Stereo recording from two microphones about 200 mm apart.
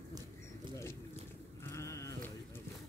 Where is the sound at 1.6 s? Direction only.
15° left (ahead or behind).